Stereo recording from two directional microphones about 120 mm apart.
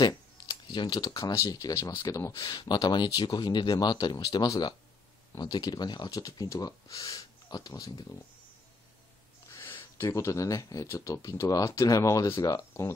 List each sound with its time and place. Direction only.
0.0 s speech: 40° left (ahead or behind)
9.5 s speech: 20° left (ahead or behind)